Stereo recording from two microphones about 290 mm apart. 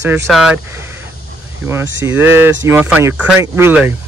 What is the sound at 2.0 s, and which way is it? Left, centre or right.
Speech, centre.